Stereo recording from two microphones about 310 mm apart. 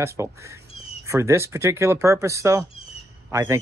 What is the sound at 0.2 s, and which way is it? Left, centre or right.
Speech, centre.